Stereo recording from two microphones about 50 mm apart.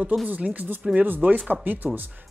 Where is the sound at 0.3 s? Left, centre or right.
Right.